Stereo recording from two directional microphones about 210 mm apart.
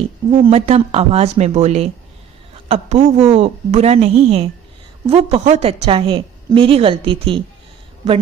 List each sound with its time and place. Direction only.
0.3 s a woman's voice: 25° right (ahead or behind)